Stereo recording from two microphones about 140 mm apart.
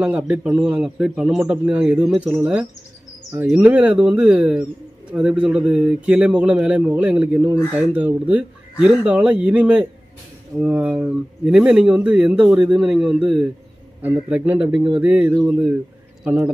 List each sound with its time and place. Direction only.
0.0 s a man's voice: 10° right (ahead or behind)